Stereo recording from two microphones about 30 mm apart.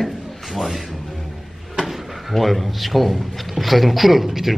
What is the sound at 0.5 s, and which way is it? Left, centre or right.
Speech, centre.